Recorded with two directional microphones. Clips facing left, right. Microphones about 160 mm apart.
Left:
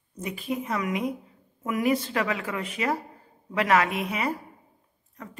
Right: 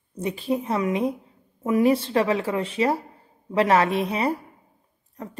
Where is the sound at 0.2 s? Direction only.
30° right (ahead or behind).